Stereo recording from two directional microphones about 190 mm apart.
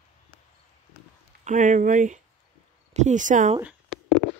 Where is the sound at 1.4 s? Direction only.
40° right (ahead or behind).